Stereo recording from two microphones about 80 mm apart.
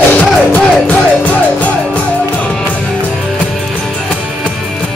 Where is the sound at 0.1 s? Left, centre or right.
Centre.